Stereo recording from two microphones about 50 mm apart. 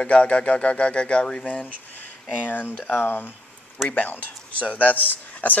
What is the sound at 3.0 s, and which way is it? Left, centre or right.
Speech, left.